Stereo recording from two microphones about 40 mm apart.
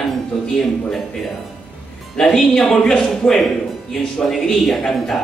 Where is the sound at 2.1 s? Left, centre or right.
Centre.